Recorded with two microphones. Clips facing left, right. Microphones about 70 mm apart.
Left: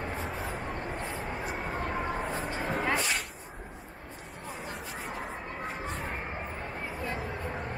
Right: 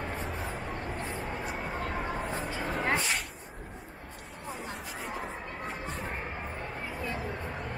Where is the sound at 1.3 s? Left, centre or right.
Centre.